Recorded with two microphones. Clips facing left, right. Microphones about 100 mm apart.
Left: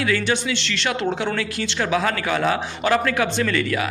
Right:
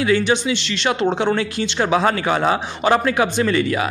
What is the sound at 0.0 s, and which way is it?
A man's voice, 20° right (ahead or behind).